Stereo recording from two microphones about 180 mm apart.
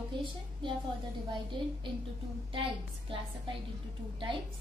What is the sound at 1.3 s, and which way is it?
A woman's voice, 25° right (ahead or behind).